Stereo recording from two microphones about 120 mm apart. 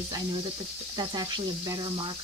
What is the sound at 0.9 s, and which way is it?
Speech, 35° right (ahead or behind).